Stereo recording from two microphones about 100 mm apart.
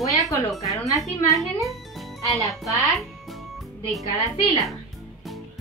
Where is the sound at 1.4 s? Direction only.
Centre (ahead or behind).